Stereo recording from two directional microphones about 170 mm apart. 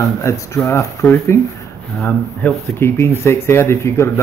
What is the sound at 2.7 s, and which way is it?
Speech, 15° left (ahead or behind).